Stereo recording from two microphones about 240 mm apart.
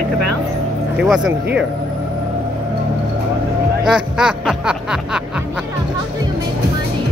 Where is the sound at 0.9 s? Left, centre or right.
Centre.